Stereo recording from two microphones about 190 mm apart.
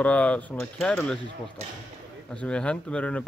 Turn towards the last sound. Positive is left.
turn(degrees=5)  # may be behind; listen again after turning